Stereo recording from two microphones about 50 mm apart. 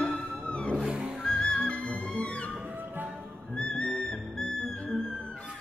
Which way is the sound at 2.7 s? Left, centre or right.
Right.